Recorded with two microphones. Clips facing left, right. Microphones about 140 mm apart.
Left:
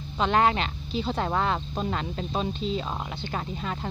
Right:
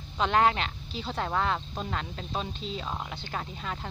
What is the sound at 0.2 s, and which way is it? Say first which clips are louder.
Speech: left 2 dB; centre (ahead or behind).